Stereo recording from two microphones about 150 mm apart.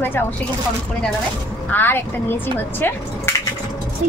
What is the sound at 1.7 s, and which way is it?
Speech, 15° left (ahead or behind).